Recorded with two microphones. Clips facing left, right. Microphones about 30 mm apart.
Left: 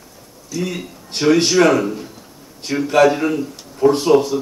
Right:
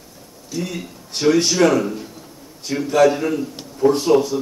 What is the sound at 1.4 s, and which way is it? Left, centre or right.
Speech, centre.